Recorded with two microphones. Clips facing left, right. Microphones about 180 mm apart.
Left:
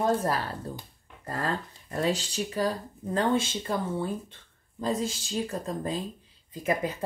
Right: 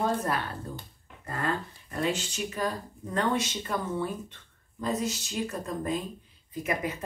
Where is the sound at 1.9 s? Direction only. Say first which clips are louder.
Left 2 dB; 35° left (ahead or behind).